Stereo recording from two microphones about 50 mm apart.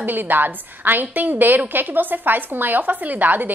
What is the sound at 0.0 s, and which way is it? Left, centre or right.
A woman's voice, right.